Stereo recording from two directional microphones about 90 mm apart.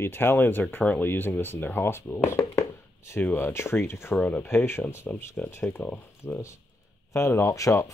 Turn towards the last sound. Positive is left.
turn(degrees=35)  # may be behind; listen again after turning